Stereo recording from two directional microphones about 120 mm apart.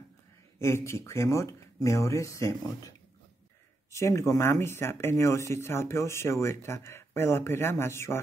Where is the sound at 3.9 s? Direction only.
25° left (ahead or behind).